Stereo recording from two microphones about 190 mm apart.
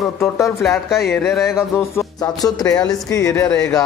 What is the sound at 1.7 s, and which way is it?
Speech, 15° left (ahead or behind).